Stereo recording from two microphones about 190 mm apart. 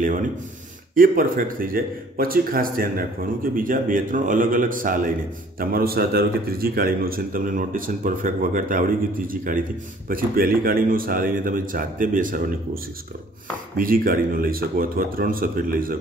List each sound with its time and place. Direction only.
0.9 s speech: 45° right (ahead or behind)
13.7 s speech: 50° right (ahead or behind)